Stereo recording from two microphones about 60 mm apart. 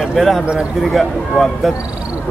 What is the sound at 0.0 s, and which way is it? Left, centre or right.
Speech, centre.